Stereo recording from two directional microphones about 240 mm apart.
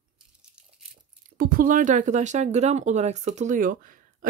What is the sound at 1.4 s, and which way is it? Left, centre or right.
Speech, right.